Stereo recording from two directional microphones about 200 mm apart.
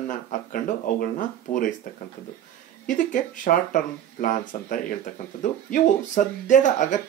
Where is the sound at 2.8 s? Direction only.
40° left (ahead or behind).